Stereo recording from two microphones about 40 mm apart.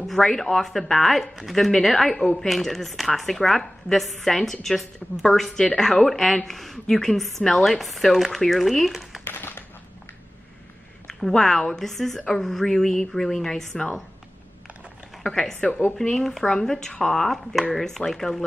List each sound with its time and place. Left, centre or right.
0.0 s a woman's voice: centre
9.2 s a sound: left
11.1 s a woman's voice: centre
15.3 s a woman's voice: left; by 18.4 s centre